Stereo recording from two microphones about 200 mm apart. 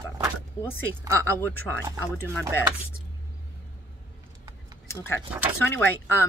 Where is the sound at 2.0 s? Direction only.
15° left (ahead or behind).